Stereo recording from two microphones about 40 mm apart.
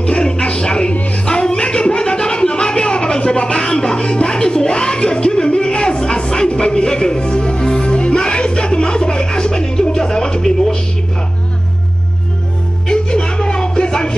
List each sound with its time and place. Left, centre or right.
0.0 s music: left
1.2 s a sound: left
12.8 s music: left